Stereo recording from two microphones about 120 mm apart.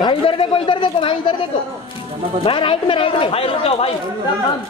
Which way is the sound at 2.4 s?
45° left (ahead or behind).